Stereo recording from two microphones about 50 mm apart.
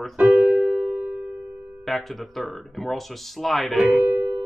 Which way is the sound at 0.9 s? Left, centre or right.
Right.